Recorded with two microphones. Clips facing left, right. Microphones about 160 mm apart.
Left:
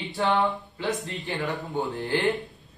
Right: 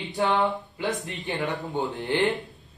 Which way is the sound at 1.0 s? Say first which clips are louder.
Right 1 dB; 20° right (ahead or behind).